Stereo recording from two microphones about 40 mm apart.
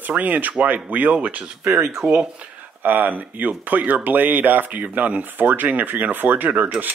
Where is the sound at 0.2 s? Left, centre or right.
Right.